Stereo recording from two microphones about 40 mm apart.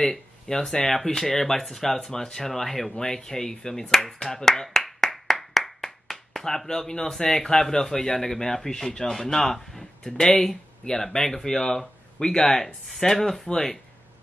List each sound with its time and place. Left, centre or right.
0.5 s speech: centre